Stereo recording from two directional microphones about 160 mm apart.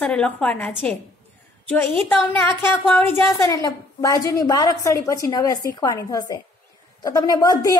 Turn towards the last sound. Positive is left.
turn(degrees=20)  # may be behind; listen again after turning